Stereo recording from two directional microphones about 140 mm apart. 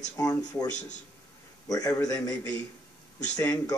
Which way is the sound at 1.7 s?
25° left (ahead or behind).